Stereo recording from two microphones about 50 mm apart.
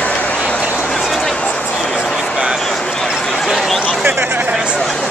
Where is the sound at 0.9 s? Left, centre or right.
Centre.